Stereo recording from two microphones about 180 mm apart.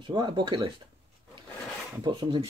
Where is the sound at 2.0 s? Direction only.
25° right (ahead or behind).